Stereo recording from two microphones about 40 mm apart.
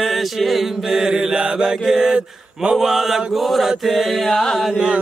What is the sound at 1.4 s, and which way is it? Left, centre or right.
Mantra, right.